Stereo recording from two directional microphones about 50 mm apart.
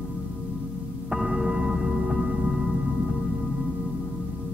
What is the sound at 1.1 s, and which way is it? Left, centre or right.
Music, centre.